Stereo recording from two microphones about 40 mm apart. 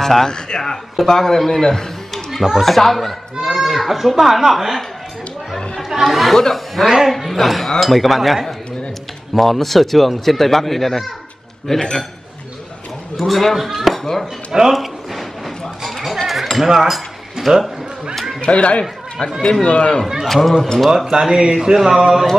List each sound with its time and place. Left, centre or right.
0.0 s a man's voice: centre
5.8 s chatter: centre
6.0 s a man's voice: centre
13.3 s speech: centre
14.7 s a sound: centre
16.3 s cutlery: centre
17.5 s a sound: centre
18.4 s speech: left
20.2 s a man's voice: centre
20.9 s speech: centre